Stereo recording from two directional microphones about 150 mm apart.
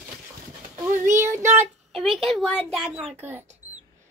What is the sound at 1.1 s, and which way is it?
Child singing, 15° right (ahead or behind).